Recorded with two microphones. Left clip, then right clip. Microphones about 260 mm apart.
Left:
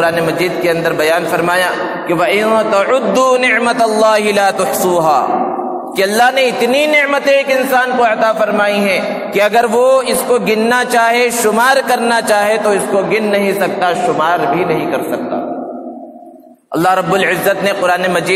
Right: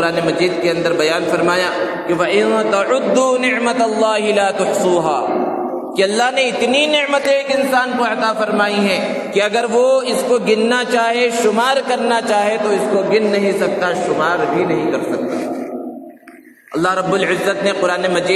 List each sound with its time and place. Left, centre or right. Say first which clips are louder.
0.0 s a man's voice: left 3 dB; left
16.8 s a man's voice: left 4 dB; left